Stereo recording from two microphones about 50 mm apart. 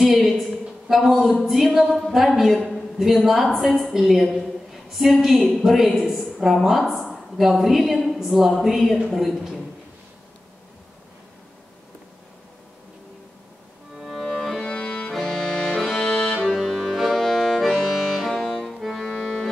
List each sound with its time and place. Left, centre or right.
0.0 s a sound: centre
1.4 s a woman's voice: centre
13.9 s music: centre
14.7 s accordion: left
15.1 s accordion: centre
16.4 s music: centre